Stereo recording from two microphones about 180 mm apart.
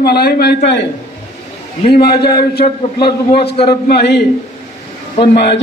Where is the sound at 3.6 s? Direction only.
65° left (ahead or behind).